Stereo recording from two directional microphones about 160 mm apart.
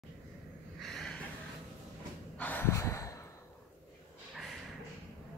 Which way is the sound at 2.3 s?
10° left (ahead or behind).